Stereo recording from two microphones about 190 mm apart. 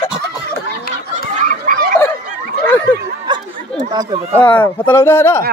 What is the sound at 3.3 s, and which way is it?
Chatter, 25° right (ahead or behind).